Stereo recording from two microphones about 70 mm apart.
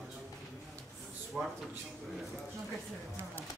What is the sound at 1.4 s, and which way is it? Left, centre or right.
Speech, centre.